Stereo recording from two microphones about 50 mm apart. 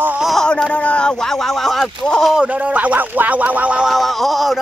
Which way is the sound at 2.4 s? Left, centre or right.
Right.